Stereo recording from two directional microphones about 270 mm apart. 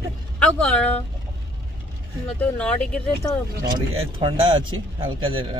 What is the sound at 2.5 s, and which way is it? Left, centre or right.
Speech, centre.